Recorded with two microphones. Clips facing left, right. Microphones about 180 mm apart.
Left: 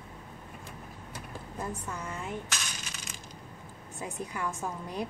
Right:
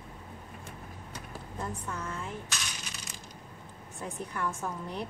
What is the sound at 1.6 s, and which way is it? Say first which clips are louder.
Speech: even; 10° left (ahead or behind).